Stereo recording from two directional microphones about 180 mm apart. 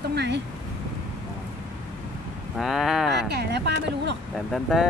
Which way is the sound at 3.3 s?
65° right (ahead or behind).